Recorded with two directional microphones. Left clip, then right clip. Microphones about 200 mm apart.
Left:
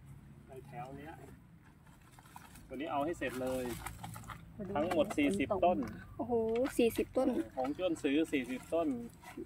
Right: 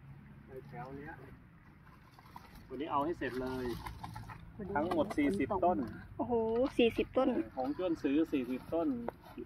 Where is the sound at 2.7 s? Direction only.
20° left (ahead or behind).